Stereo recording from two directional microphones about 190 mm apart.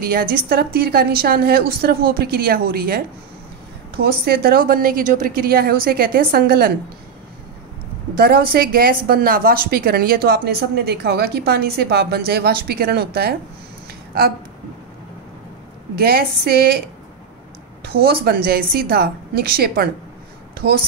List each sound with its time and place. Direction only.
0.0 s a woman's voice: 50° right (ahead or behind)
8.2 s a woman's voice: 50° right (ahead or behind)
16.0 s a woman's voice: 55° right (ahead or behind)
17.8 s a woman's voice: 55° right (ahead or behind)